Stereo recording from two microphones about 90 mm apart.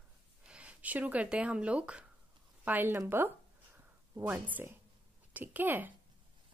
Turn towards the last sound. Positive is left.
turn(degrees=-20)  # may be behind; listen again after turning